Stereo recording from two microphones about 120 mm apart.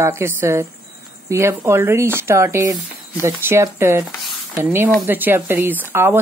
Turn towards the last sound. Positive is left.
turn(degrees=-20)  # may be behind; listen again after turning